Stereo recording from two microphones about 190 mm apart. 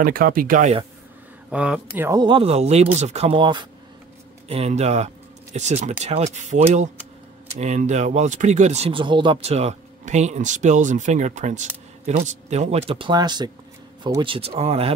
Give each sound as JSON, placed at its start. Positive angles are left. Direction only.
{"t": 0.0, "sound": "speech", "side_deg": -50}
{"t": 1.5, "sound": "speech", "side_deg": -5}
{"t": 2.0, "sound": "speech", "side_deg": -20}